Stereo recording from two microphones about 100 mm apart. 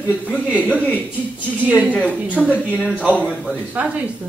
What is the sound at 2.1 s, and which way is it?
Speech, 15° right (ahead or behind).